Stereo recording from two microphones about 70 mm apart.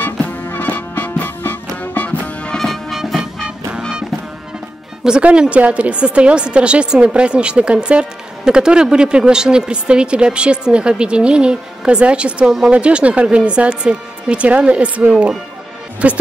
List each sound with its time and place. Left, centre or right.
0.0 s music: left
2.5 s music: centre
5.0 s a woman's voice: centre